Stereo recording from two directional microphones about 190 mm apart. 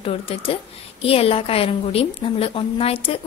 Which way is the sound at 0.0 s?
30° left (ahead or behind).